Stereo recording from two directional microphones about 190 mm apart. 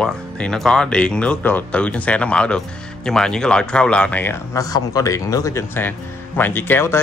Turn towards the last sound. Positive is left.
turn(degrees=10)  # may be behind; listen again after turning